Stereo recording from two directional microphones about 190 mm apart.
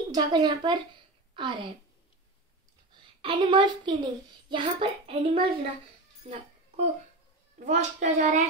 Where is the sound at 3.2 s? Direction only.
25° right (ahead or behind).